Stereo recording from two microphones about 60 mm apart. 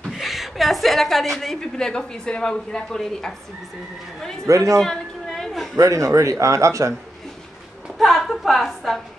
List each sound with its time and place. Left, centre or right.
0.2 s a sound: centre
1.3 s speech: centre
4.5 s a man's voice: right
4.7 s chatter: centre
5.8 s a man's voice: right
8.0 s a sound: centre